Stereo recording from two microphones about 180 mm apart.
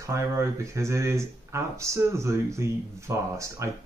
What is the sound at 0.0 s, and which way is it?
Speech, 15° right (ahead or behind).